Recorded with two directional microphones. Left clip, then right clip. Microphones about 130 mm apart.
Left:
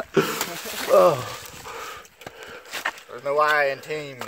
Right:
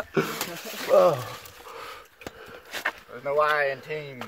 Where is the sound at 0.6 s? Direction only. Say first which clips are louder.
Left 4 dB; 90° left.